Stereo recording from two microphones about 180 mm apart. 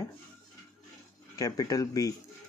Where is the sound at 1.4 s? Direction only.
20° left (ahead or behind).